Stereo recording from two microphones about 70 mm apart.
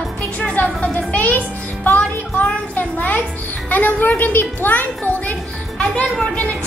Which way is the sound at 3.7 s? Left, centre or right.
Left.